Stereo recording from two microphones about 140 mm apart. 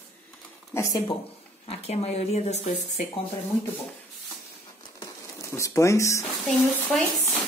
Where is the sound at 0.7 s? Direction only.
20° left (ahead or behind).